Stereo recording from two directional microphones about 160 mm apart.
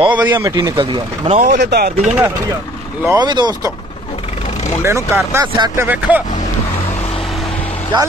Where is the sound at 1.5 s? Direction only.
90° right.